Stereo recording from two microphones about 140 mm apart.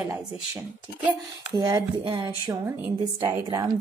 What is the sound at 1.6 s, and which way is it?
Speech, 30° right (ahead or behind).